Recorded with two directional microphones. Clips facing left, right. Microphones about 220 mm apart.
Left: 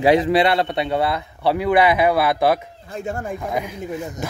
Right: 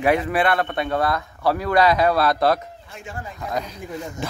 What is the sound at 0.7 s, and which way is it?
Speech, 15° left (ahead or behind).